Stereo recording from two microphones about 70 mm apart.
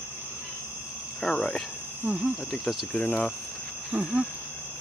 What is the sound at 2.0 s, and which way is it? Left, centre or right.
Speech, centre.